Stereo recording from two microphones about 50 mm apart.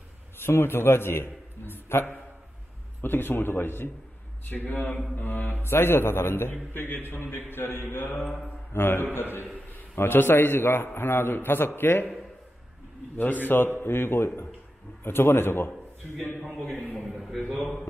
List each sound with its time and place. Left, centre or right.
0.4 s a man's voice: left
5.7 s a man's voice: left
13.2 s a man's voice: left
17.0 s a man's voice: centre